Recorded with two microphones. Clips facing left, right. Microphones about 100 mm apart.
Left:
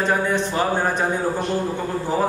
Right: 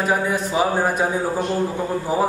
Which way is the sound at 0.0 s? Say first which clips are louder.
Even; 5° right (ahead or behind).